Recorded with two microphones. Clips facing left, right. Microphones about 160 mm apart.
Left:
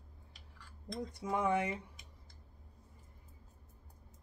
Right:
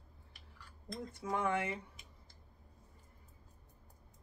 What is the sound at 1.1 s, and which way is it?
Speech, 15° left (ahead or behind).